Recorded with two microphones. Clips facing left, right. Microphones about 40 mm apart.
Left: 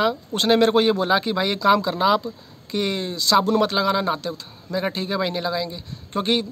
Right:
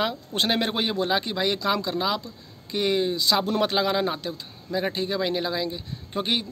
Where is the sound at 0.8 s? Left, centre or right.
Centre.